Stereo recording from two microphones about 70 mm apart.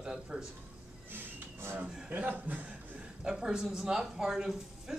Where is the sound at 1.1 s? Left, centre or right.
Right.